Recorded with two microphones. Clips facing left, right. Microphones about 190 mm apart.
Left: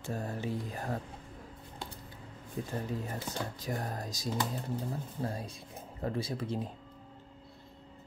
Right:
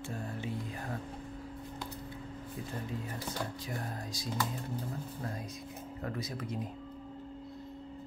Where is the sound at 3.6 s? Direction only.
40° left (ahead or behind).